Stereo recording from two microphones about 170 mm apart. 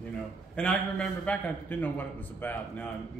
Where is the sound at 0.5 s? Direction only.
5° left (ahead or behind).